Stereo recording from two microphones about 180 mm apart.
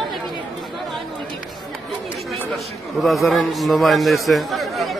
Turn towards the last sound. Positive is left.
turn(degrees=0)  # may be behind; listen again after turning